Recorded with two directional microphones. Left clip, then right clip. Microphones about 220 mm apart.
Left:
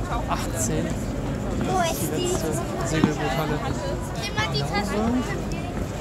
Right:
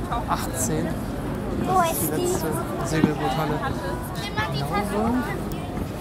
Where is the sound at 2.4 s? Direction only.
5° left (ahead or behind).